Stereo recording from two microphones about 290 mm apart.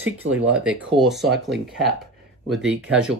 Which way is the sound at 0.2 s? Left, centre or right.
Right.